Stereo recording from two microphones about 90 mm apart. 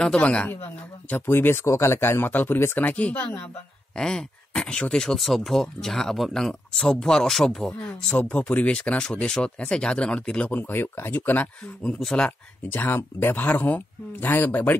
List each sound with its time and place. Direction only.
0.0 s speech: 10° left (ahead or behind)
1.1 s speech: 25° left (ahead or behind)
3.9 s speech: 5° left (ahead or behind)
8.1 s speech: 20° left (ahead or behind)
12.0 s speech: 5° left (ahead or behind)
12.3 s speech: 25° left (ahead or behind)